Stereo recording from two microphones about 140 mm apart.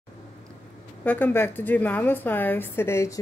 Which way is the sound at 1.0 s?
10° left (ahead or behind).